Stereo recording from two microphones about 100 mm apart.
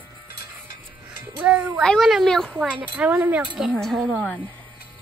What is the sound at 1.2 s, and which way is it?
Speech, 15° right (ahead or behind).